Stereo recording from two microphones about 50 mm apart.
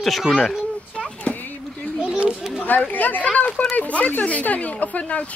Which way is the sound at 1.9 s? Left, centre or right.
Centre.